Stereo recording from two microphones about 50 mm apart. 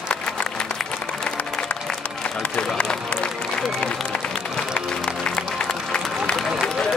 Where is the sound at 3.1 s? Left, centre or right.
Left.